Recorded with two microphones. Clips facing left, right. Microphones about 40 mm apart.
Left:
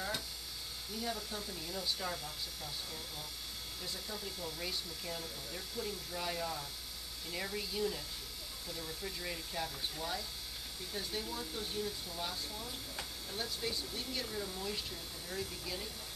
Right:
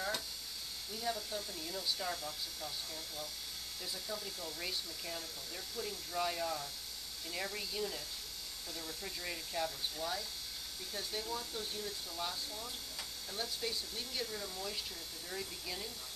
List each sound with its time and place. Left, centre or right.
0.9 s speech: centre
3.8 s speech: centre
14.2 s speech: centre
15.2 s speech: centre